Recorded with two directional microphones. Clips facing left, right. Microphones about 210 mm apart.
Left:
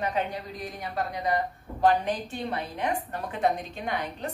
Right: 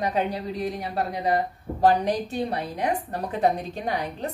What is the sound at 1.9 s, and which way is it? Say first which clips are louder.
A woman's voice: right 3 dB; 35° right (ahead or behind).